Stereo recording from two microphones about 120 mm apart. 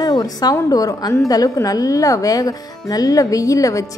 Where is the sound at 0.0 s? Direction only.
35° left (ahead or behind).